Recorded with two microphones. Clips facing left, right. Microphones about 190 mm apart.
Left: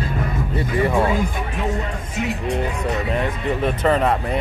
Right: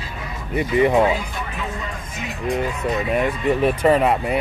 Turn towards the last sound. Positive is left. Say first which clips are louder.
# right 2 dB
turn(degrees=-10)  # may be behind; listen again after turning